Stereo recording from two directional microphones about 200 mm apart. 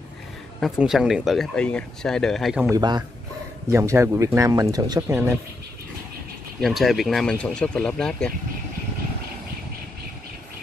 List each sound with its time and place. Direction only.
0.6 s speech: centre (ahead or behind)
2.7 s speech: 20° right (ahead or behind)
6.6 s speech: centre (ahead or behind)